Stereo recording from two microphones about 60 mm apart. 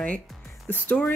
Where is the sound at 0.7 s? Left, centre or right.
Left.